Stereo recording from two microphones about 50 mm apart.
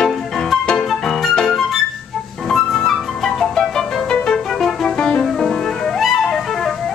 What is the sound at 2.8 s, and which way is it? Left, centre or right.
Music, centre.